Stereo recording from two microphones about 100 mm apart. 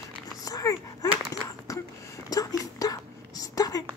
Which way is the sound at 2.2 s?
40° left (ahead or behind).